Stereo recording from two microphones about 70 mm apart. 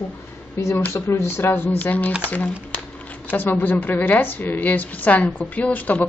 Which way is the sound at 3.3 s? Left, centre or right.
Left.